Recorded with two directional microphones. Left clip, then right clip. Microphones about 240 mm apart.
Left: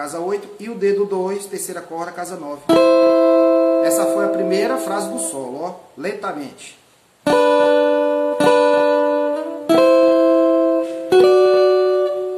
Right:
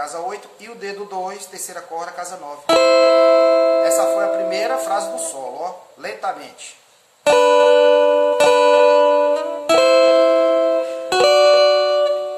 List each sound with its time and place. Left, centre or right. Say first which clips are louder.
0.0 s speech: left 3 dB; centre
2.7 s music: even; right
3.8 s speech: right 1 dB; centre
7.2 s music: right 2 dB; right